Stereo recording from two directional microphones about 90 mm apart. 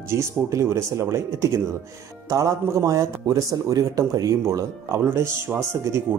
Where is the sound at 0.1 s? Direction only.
30° right (ahead or behind).